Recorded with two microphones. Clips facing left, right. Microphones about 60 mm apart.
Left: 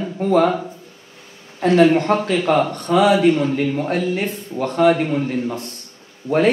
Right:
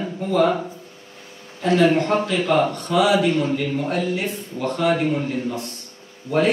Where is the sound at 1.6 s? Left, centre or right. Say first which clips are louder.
Left 3 dB; left.